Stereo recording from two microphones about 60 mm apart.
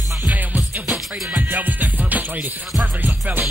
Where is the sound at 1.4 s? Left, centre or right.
Right.